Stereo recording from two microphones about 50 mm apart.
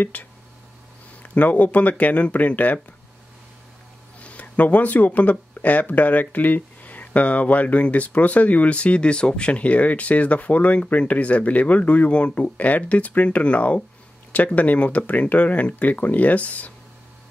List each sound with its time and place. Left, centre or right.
0.0 s speech: left
4.2 s speech: left